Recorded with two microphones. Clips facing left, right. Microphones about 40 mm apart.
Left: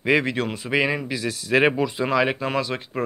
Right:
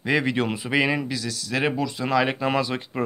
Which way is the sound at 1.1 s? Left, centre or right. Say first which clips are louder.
Left 6 dB; left.